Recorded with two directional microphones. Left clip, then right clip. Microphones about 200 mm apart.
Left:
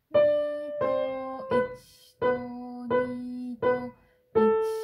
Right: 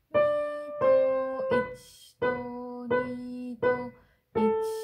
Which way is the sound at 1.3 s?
35° right (ahead or behind).